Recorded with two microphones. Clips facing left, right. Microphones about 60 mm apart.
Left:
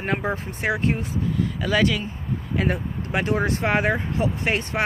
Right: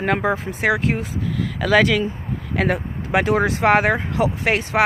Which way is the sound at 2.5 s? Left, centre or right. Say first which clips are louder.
Right 4 dB; right.